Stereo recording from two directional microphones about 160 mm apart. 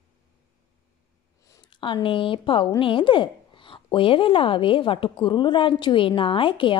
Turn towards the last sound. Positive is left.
turn(degrees=30)  # may be behind; listen again after turning